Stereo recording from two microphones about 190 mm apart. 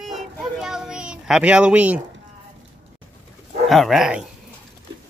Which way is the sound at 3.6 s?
Centre (ahead or behind).